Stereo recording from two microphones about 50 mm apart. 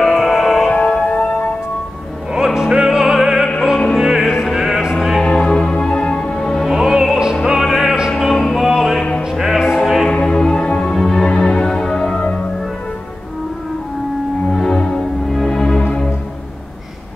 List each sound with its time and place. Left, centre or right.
0.0 s music: centre
0.7 s music: centre
2.3 s opera: centre
5.2 s music: centre
6.3 s music: centre
6.7 s opera: centre
7.4 s music: centre
10.0 s music: centre
14.5 s music: centre
14.8 s music: centre
15.3 s music: centre